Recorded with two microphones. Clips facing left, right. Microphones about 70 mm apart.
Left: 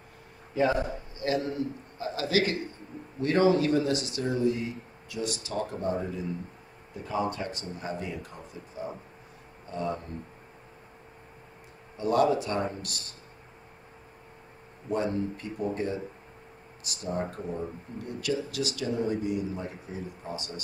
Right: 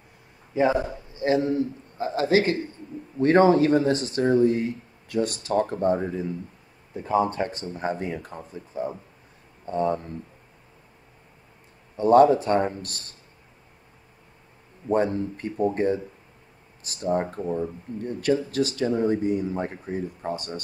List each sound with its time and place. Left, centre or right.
0.6 s a man's voice: right
12.0 s speech: right
14.9 s speech: right